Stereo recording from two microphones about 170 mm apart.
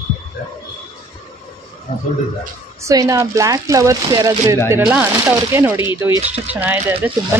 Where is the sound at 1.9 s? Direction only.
35° left (ahead or behind).